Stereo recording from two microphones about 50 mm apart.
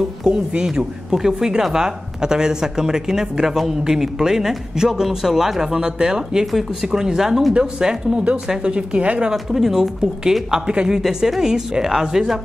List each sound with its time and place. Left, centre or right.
0.3 s speech: centre
9.3 s speech: centre